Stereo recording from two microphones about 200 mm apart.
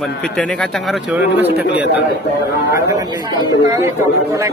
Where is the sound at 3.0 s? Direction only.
15° right (ahead or behind).